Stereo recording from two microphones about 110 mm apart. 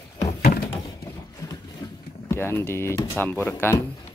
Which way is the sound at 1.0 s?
35° left (ahead or behind).